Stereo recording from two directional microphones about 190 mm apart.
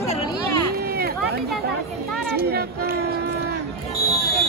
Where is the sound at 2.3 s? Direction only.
55° right (ahead or behind).